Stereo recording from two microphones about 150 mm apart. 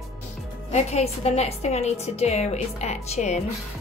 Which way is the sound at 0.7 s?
45° left (ahead or behind).